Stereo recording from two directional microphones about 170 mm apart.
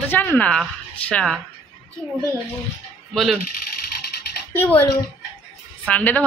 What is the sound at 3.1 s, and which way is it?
Speech, centre (ahead or behind).